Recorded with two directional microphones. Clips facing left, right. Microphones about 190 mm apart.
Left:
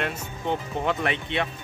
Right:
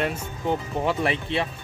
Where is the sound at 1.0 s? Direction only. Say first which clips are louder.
Right 2 dB; 30° right (ahead or behind).